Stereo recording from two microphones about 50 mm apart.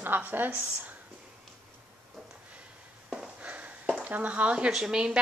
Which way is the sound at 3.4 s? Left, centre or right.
Right.